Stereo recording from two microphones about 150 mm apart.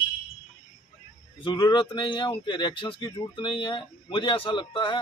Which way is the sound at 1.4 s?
30° left (ahead or behind).